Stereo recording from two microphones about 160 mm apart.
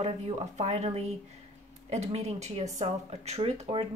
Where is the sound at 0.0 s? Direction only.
45° right (ahead or behind).